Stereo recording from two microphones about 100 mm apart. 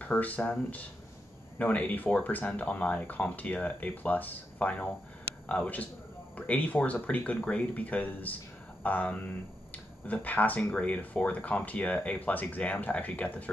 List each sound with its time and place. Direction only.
0.0 s speech: 15° left (ahead or behind)